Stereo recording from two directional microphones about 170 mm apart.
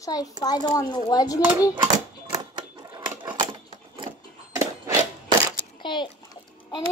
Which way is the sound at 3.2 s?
25° right (ahead or behind).